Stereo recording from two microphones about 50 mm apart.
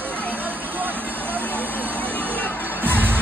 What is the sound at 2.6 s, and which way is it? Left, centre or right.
Music, right.